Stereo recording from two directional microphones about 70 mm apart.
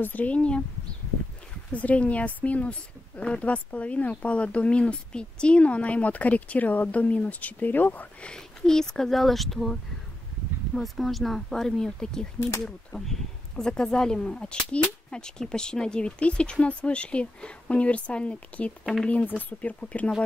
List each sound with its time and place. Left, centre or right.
0.0 s speech: left
1.7 s speech: left
8.3 s speech: centre
12.4 s speech: left
12.6 s speech: centre